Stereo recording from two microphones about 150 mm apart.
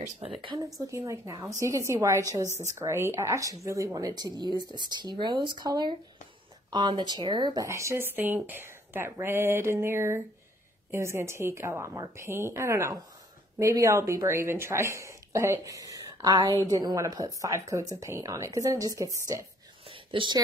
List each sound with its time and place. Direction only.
0.4 s speech: 35° right (ahead or behind)
0.7 s speech: 20° right (ahead or behind)
19.9 s whispering: 35° right (ahead or behind)